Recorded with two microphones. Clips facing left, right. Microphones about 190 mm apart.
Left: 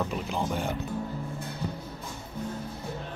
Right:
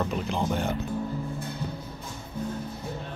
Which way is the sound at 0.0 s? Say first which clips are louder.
Right 2 dB; centre (ahead or behind).